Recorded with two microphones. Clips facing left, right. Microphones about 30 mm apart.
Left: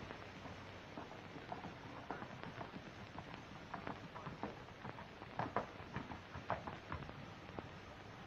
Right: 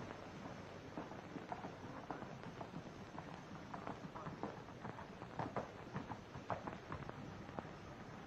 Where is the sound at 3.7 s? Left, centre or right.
Left.